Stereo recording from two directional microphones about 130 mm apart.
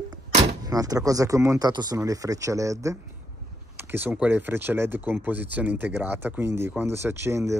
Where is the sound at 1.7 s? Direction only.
35° right (ahead or behind).